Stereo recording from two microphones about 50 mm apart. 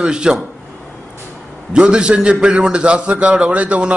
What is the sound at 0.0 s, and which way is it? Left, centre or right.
Speech, centre.